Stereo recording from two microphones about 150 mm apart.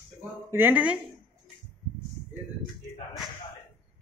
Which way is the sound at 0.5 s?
10° right (ahead or behind).